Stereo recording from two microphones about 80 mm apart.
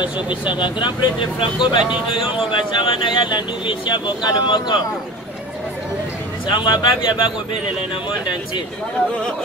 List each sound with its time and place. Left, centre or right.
0.0 s speech: left
6.4 s speech: left